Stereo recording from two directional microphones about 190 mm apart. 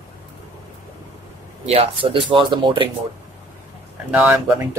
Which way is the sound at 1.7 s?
30° right (ahead or behind).